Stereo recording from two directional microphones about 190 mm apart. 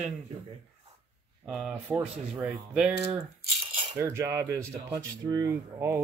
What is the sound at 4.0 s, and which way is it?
Speech, 15° right (ahead or behind).